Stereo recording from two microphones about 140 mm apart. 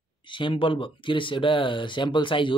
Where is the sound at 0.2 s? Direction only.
35° left (ahead or behind).